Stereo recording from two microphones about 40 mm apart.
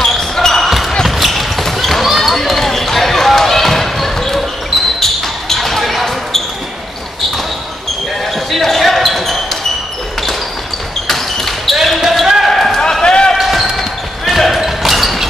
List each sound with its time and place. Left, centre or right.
0.2 s basketball bounce: centre
0.7 s basketball bounce: centre
8.5 s basketball bounce: centre
11.1 s basketball bounce: centre
13.0 s basketball bounce: centre
13.3 s basketball bounce: centre